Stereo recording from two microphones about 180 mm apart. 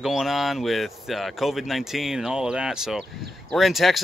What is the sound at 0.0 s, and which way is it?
Speech, centre (ahead or behind).